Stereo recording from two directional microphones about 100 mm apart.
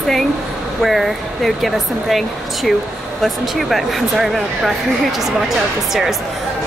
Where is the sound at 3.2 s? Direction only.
Centre (ahead or behind).